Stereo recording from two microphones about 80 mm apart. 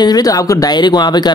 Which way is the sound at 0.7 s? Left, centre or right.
Left.